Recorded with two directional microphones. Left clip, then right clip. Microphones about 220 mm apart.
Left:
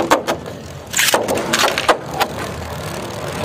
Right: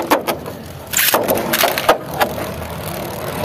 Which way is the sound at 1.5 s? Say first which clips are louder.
Left 3 dB; 30° right (ahead or behind).